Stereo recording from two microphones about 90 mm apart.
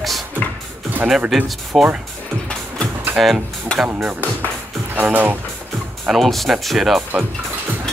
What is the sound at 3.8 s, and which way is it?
Speech, 20° right (ahead or behind).